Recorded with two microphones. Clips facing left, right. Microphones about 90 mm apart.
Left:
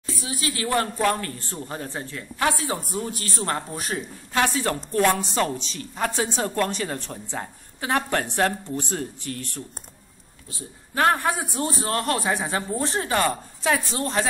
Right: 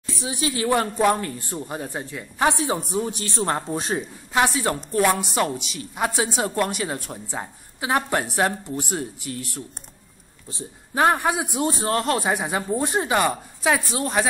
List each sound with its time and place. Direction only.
0.1 s speech: 20° right (ahead or behind)
10.5 s speech: 15° right (ahead or behind)